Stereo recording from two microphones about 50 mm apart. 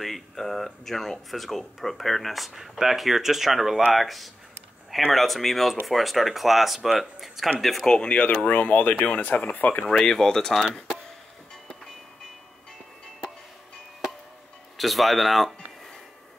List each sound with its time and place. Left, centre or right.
0.0 s speech: centre
7.8 s speech: centre
8.1 s speech: left
9.8 s speech: centre
10.6 s speech: centre
14.8 s speech: centre